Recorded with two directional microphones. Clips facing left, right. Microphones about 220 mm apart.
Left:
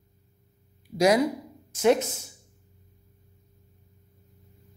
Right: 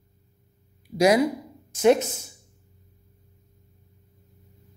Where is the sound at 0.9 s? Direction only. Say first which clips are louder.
Right 2 dB; 10° right (ahead or behind).